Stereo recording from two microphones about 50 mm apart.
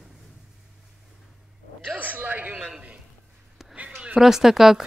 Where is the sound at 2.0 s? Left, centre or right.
Right.